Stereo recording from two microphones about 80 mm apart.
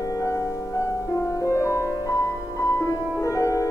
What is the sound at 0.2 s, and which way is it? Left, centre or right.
Music, left.